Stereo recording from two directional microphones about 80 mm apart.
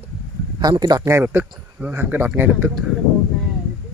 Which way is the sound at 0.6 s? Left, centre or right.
Right.